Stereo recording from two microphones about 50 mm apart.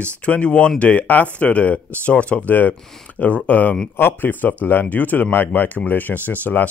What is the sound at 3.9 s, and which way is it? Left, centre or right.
Speech, left.